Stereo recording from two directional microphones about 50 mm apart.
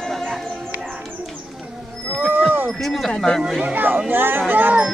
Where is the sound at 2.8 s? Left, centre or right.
Centre.